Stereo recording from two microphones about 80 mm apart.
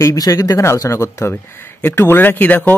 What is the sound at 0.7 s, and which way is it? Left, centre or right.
Speech, left.